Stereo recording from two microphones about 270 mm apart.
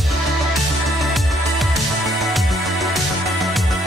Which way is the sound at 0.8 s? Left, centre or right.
Centre.